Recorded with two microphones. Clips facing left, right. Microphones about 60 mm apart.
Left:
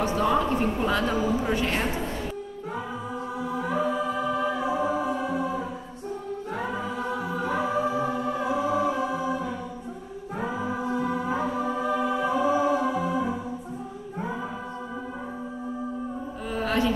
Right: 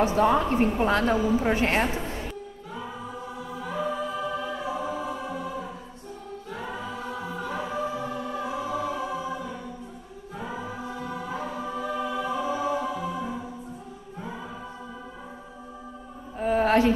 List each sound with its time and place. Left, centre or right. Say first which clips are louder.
0.1 s a woman's voice: right 2 dB; right
3.4 s music: left 4 dB; left
16.4 s mantra: right 5 dB; right